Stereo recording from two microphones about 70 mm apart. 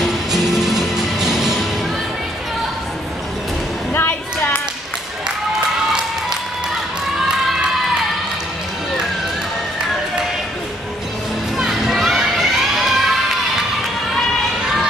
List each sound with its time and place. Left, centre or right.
0.0 s music: centre
3.9 s a sound: left
11.5 s children shouting: centre